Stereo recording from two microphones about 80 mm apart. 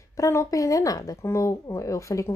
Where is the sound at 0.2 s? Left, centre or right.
Left.